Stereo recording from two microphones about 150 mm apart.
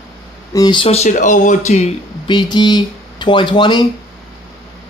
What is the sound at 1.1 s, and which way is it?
Speech, 60° left (ahead or behind).